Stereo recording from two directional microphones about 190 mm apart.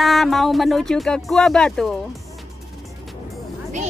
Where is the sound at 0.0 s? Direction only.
Centre (ahead or behind).